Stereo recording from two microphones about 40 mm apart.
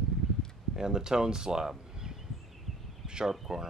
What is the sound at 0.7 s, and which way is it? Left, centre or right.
Speech, centre.